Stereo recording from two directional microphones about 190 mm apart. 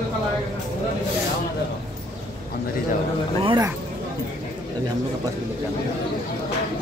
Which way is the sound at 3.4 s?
25° right (ahead or behind).